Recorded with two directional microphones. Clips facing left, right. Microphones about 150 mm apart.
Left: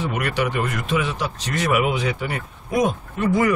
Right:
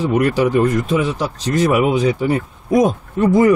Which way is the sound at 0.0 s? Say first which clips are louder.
Right 8 dB; 35° right (ahead or behind).